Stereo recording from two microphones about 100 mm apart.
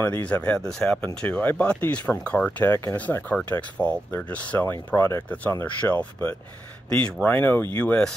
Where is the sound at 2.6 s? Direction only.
25° left (ahead or behind).